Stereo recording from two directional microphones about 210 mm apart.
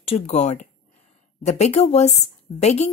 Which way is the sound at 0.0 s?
30° left (ahead or behind).